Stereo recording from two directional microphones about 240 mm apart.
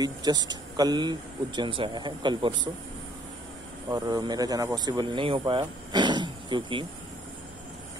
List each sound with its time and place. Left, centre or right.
0.0 s speech: centre
3.9 s speech: centre